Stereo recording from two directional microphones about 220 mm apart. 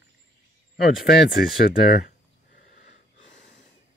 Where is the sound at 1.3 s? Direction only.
45° left (ahead or behind).